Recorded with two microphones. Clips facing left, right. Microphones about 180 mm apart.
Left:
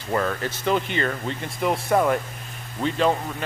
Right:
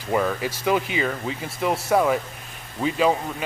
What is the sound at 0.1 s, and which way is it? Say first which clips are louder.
Speech: right 2 dB; 5° right (ahead or behind).